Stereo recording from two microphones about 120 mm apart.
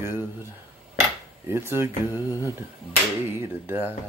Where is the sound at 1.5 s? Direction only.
20° right (ahead or behind).